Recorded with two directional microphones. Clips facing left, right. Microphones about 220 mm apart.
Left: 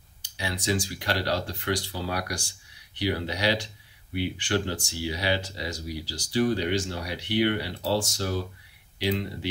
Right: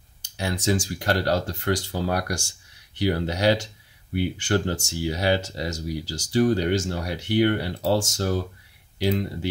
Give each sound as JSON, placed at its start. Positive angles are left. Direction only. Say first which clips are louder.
{"t": 0.2, "sound": "speech", "louder": "right 5 dB", "side_deg": -45}